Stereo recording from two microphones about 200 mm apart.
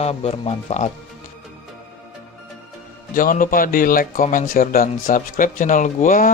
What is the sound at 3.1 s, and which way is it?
Speech, 45° left (ahead or behind).